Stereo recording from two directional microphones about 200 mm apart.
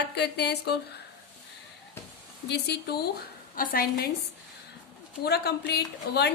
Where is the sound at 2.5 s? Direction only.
55° left (ahead or behind).